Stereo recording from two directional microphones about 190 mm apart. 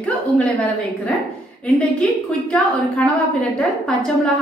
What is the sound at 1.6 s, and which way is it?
A woman's voice, 5° left (ahead or behind).